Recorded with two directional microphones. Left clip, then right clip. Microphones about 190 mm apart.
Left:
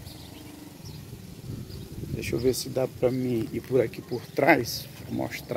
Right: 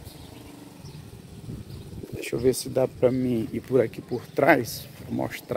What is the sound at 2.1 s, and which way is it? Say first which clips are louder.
Speech: right 2 dB; 20° right (ahead or behind).